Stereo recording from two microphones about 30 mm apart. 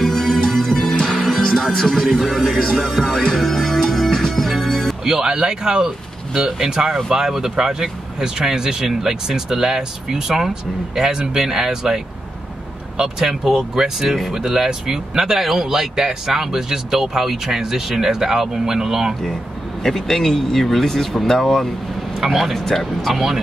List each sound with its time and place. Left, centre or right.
0.0 s music: centre
1.1 s music: centre
1.8 s speech: centre
3.3 s speech: centre
4.6 s music: centre
5.0 s speech: right
19.8 s speech: centre
22.2 s speech: centre